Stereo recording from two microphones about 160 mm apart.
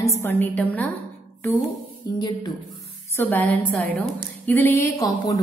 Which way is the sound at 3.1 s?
10° left (ahead or behind).